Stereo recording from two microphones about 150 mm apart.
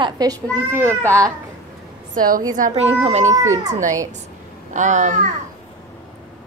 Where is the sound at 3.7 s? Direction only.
55° right (ahead or behind).